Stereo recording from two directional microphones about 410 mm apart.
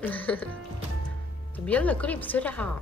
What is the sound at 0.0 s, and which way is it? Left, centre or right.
Speech, centre.